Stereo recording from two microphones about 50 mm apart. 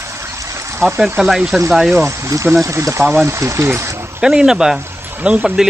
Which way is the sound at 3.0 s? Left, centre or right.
Right.